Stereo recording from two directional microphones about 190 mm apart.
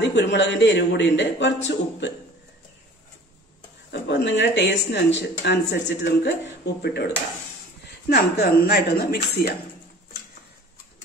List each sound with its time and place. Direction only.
0.0 s speech: 70° left (ahead or behind)
3.9 s speech: 70° left (ahead or behind)
8.1 s speech: 55° left (ahead or behind)